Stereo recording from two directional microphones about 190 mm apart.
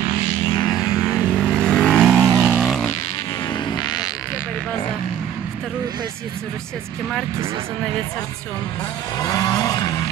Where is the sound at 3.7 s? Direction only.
20° left (ahead or behind).